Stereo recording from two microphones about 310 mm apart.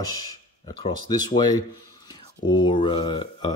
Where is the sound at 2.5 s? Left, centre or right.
Centre.